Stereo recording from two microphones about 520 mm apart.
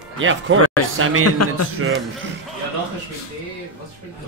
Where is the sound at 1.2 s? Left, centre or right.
Left.